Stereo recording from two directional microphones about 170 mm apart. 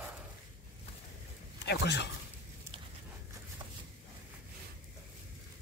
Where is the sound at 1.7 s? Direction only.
85° left.